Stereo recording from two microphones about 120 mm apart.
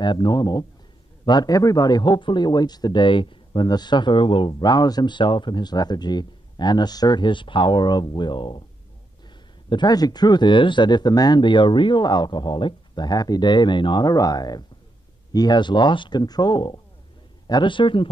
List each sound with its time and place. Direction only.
0.0 s a man's voice: 40° left (ahead or behind)
9.7 s a man's voice: 35° left (ahead or behind)